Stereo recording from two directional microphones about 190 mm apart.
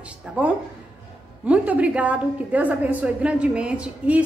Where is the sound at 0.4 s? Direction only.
5° right (ahead or behind).